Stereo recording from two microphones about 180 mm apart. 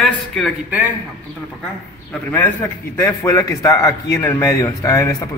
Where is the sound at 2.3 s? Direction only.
10° left (ahead or behind).